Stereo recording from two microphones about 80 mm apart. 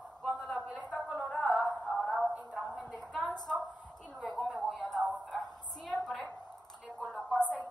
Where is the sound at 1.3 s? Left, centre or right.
Centre.